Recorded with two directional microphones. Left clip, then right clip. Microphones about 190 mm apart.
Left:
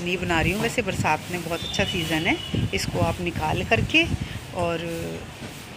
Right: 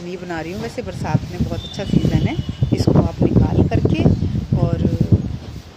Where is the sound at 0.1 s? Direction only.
10° right (ahead or behind).